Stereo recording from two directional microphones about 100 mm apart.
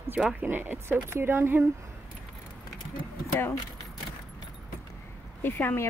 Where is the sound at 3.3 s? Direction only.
20° left (ahead or behind).